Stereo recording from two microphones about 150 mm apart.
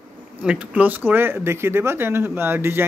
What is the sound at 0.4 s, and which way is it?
Speech, 10° right (ahead or behind).